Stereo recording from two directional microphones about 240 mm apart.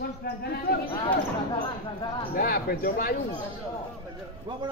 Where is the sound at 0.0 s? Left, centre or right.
Left.